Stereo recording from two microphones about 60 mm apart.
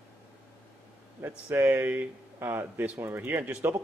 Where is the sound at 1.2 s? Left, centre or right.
Right.